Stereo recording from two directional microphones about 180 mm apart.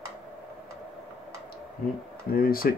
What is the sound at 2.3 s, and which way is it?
Speech, 55° left (ahead or behind).